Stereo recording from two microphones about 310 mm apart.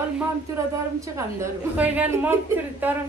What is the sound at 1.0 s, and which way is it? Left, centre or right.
A woman's voice, centre.